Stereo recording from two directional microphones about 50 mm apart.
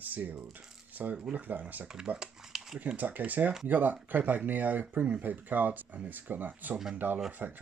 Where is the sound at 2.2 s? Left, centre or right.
Centre.